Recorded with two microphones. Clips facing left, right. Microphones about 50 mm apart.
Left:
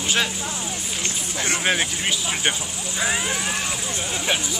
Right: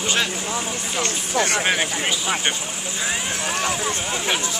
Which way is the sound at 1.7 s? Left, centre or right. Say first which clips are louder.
Right 1 dB; centre.